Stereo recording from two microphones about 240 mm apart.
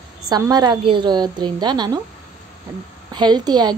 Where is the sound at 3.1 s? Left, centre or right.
Centre.